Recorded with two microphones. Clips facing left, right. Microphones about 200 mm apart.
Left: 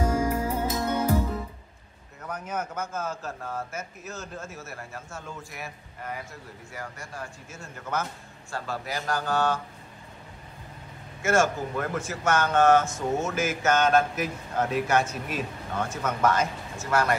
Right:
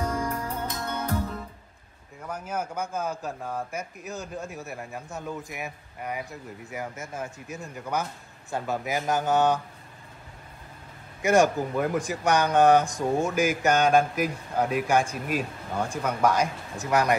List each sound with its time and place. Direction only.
0.0 s music: 5° left (ahead or behind)
2.2 s speech: 10° right (ahead or behind)
11.2 s speech: 15° right (ahead or behind)